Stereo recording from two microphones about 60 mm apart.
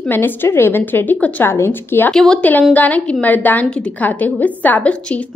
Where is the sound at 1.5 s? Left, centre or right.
Left.